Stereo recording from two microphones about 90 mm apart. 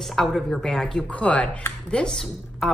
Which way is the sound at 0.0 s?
Centre (ahead or behind).